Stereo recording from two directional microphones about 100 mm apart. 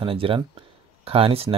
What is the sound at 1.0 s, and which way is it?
Speech, 75° right (ahead or behind).